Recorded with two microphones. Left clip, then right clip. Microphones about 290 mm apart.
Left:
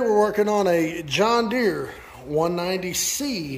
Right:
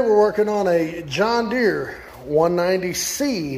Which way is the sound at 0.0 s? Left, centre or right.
Centre.